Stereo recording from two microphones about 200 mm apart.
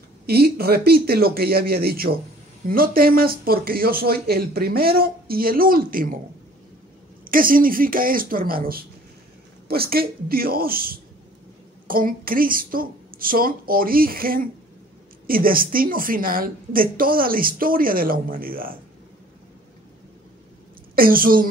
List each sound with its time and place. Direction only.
0.3 s speech: 50° right (ahead or behind)
7.2 s speech: 45° right (ahead or behind)
20.9 s speech: 45° right (ahead or behind)